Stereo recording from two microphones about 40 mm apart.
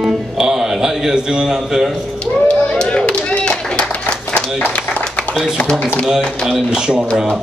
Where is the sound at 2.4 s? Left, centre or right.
Left.